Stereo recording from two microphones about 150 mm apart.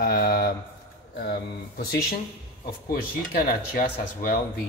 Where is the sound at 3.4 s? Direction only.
65° left (ahead or behind).